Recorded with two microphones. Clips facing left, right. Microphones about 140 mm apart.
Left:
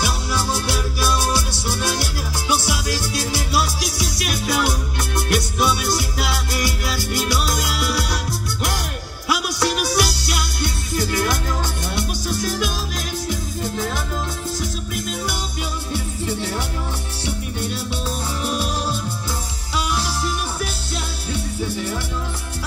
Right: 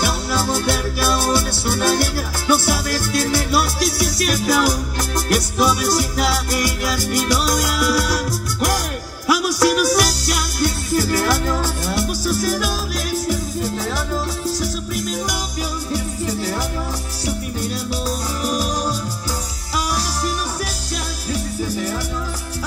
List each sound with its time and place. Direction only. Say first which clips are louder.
0.0 s music: right 3 dB; 50° right (ahead or behind)
18.4 s music: right 3 dB; 40° right (ahead or behind)
21.3 s music: right 2 dB; 40° right (ahead or behind)